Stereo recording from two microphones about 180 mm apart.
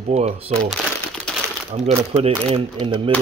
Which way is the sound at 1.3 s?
5° left (ahead or behind).